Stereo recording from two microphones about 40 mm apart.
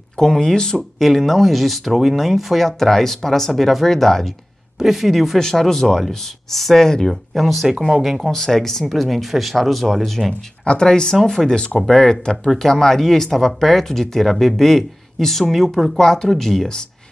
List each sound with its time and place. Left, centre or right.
0.2 s speech: centre
0.9 s speech: centre
4.7 s speech: centre
5.4 s speech: centre
7.3 s speech: centre
8.3 s speech: centre
10.6 s speech: left